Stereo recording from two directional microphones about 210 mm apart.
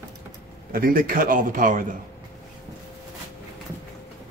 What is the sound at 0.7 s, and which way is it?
A man's voice, 45° right (ahead or behind).